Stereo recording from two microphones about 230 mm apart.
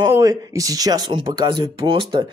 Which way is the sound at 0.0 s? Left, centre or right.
Centre.